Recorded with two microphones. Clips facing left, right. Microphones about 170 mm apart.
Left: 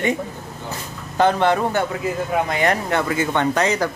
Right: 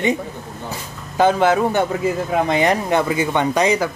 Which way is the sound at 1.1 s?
5° right (ahead or behind).